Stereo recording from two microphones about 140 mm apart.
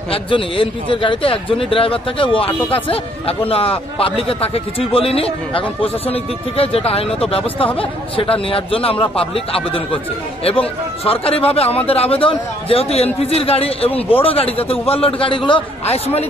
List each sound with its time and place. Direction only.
0.1 s a man's voice: 40° left (ahead or behind)